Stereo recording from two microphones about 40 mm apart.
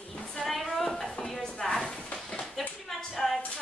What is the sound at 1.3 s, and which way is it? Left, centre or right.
Chopping, centre.